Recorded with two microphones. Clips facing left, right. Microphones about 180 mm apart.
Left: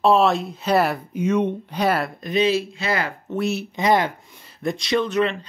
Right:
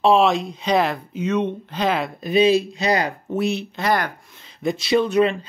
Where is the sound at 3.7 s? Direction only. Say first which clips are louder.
Left 3 dB; 20° left (ahead or behind).